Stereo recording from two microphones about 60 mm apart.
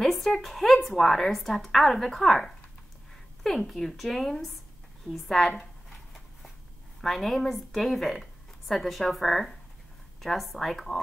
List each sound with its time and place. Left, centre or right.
0.0 s a woman's voice: centre
5.6 s a sound: centre
7.0 s a woman's voice: centre